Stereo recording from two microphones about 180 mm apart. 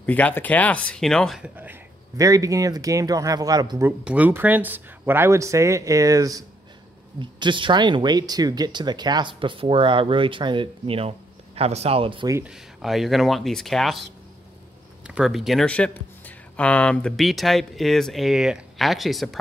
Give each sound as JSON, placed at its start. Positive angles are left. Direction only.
{"t": 0.0, "sound": "speech", "side_deg": 10}
{"t": 1.4, "sound": "speech", "side_deg": -10}
{"t": 4.0, "sound": "speech", "side_deg": -10}
{"t": 12.4, "sound": "speech", "side_deg": 0}
{"t": 15.0, "sound": "speech", "side_deg": -5}